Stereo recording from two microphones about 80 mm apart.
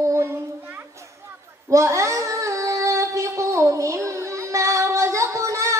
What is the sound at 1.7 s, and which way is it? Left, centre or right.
Child singing, right.